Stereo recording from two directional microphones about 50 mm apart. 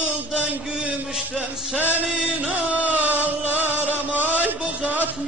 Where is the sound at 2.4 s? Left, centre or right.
Right.